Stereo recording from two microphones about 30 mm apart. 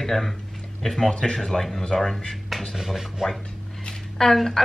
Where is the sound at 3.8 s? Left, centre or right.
Centre.